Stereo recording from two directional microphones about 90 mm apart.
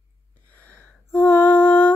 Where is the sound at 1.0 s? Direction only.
20° left (ahead or behind).